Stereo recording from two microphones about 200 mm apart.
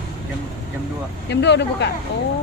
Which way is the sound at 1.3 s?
60° left (ahead or behind).